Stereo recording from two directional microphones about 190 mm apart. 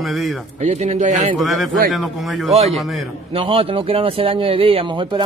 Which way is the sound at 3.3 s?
30° right (ahead or behind).